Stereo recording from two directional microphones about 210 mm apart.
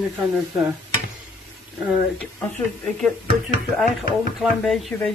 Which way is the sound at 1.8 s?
5° right (ahead or behind).